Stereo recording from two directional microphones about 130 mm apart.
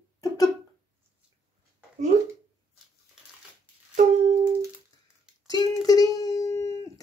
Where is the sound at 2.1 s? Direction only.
75° right (ahead or behind).